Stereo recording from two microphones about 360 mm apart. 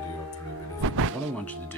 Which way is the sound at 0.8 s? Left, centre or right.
Right.